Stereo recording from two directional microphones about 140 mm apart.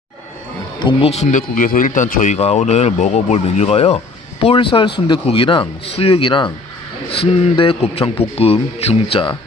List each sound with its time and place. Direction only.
0.8 s speech: 50° left (ahead or behind)
1.5 s speech: 75° left (ahead or behind)
2.3 s speech: 50° left (ahead or behind)